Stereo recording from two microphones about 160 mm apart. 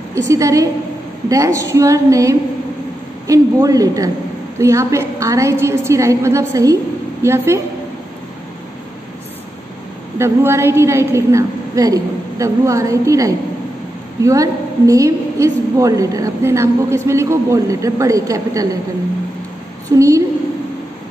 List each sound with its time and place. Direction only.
0.3 s a woman's voice: 20° right (ahead or behind)
10.1 s a woman's voice: 15° right (ahead or behind)
20.0 s a woman's voice: 20° right (ahead or behind)